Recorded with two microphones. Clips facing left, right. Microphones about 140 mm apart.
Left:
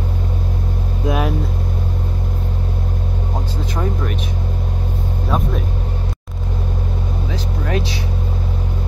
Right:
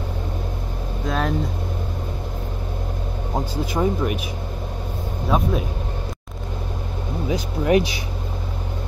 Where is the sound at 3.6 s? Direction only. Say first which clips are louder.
Right 3 dB; 10° right (ahead or behind).